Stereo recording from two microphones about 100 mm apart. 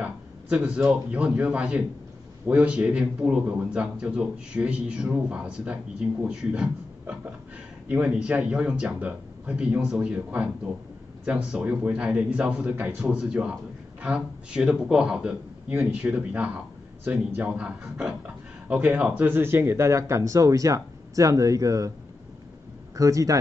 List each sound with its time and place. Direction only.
0.0 s speech: 15° right (ahead or behind); by 21.9 s 35° right (ahead or behind)
22.9 s speech: 35° right (ahead or behind)